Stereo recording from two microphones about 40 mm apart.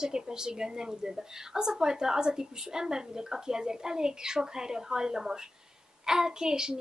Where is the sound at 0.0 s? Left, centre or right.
Centre.